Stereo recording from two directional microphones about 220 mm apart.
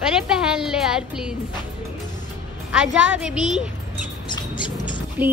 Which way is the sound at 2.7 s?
5° right (ahead or behind).